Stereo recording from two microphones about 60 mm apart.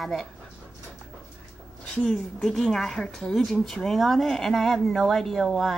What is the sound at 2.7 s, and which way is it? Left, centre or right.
Speech, centre.